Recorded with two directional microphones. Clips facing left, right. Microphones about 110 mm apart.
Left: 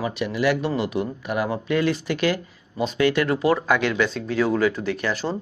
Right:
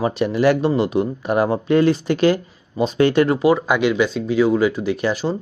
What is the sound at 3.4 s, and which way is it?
Speech, 10° right (ahead or behind).